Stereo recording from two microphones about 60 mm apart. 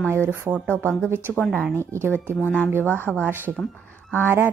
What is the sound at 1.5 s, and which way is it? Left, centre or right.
Speech, centre.